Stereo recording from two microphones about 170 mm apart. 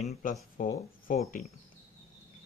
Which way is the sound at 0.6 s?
50° left (ahead or behind).